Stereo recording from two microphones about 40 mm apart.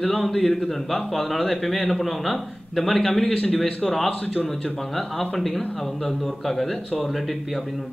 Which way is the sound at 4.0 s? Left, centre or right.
Left.